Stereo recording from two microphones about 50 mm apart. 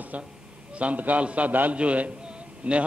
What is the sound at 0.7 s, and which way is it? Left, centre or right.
A man's voice, right.